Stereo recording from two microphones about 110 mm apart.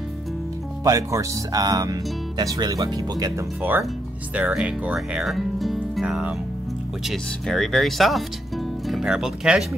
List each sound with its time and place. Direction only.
0.8 s speech: 35° right (ahead or behind)
4.4 s speech: 10° right (ahead or behind)
6.0 s speech: 15° right (ahead or behind)
7.1 s speech: centre (ahead or behind)